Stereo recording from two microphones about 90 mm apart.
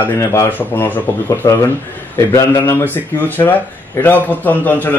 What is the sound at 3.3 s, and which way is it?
A man's voice, 20° left (ahead or behind).